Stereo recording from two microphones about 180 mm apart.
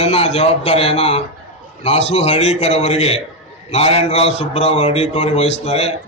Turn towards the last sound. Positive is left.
turn(degrees=35)  # may be behind; listen again after turning